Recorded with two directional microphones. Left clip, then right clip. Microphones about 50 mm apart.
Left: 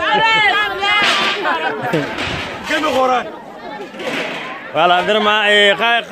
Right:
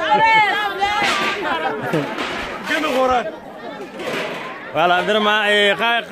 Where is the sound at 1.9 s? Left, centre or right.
Left.